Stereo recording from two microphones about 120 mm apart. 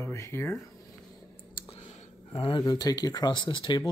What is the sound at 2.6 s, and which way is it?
Speech, 30° left (ahead or behind).